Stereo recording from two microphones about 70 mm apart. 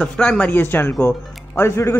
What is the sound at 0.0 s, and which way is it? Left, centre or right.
A man's voice, centre.